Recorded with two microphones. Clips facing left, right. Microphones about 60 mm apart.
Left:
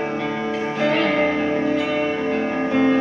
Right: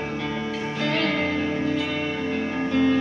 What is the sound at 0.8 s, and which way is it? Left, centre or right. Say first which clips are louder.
Music: left 5 dB; centre.